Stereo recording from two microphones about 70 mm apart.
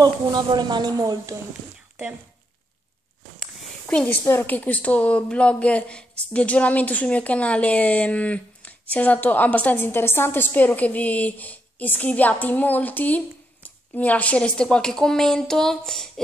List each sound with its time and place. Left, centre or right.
0.0 s a woman's voice: right
3.8 s speech: centre
4.2 s a woman's voice: left
4.5 s speech: left; by 16.1 s centre